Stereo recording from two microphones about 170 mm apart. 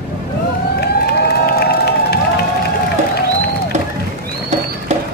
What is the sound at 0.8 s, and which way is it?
Crowd, 70° left (ahead or behind).